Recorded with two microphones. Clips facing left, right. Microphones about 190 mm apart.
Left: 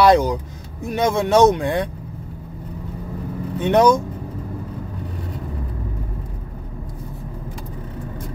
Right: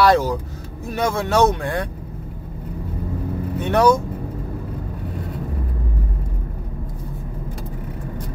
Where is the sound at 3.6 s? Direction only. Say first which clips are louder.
Left 2 dB; 20° left (ahead or behind).